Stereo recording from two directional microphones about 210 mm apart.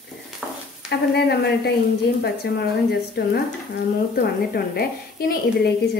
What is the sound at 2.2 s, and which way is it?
Speech, 50° left (ahead or behind).